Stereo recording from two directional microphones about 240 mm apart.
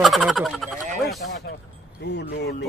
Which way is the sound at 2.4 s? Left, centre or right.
Left.